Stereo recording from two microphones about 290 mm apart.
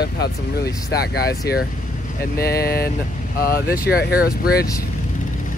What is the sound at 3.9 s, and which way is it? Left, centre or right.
Speech, left.